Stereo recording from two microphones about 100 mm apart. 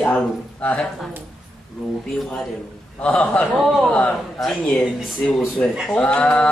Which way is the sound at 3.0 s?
20° left (ahead or behind).